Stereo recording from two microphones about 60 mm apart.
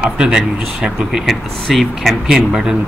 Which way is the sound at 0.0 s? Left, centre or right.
Centre.